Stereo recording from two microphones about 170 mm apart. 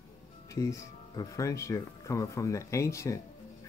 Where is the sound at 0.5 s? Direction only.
15° left (ahead or behind).